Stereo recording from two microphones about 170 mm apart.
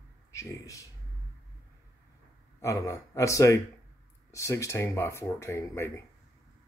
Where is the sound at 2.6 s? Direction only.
20° left (ahead or behind).